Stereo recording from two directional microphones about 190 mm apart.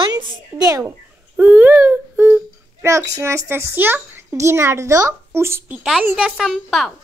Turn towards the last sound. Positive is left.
turn(degrees=0)  # may be behind; listen again after turning